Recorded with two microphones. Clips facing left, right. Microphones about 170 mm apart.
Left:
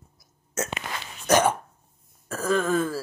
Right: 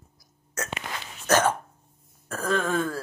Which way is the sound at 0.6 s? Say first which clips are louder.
Left 4 dB; 25° left (ahead or behind).